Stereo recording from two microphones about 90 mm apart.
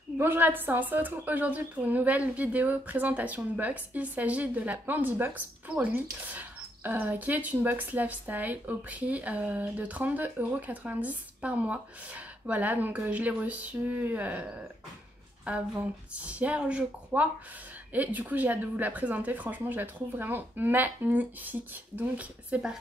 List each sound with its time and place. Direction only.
0.2 s a woman's voice: 20° right (ahead or behind)
15.5 s a woman's voice: 15° right (ahead or behind)